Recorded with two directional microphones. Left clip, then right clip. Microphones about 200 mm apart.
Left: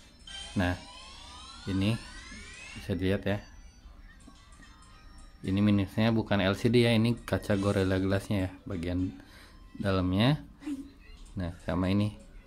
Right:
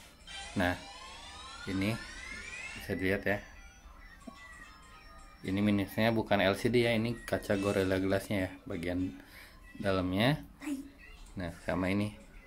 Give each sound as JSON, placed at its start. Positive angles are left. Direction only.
{"t": 0.6, "sound": "speech", "side_deg": 10}
{"t": 5.4, "sound": "speech", "side_deg": 15}